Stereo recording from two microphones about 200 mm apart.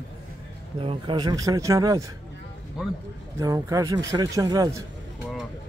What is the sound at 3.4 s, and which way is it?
Speech, 15° right (ahead or behind).